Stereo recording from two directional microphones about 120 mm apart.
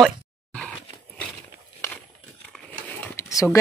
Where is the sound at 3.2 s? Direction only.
25° left (ahead or behind).